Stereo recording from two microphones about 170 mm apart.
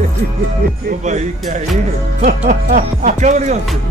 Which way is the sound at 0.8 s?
45° right (ahead or behind).